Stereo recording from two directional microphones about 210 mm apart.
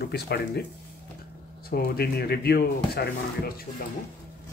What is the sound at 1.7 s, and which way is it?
Speech, 45° left (ahead or behind).